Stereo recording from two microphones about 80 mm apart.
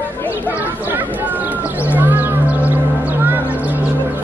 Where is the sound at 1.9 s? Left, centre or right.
Right.